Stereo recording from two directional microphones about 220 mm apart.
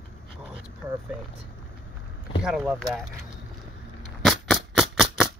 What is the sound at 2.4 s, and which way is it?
Speech, 5° right (ahead or behind).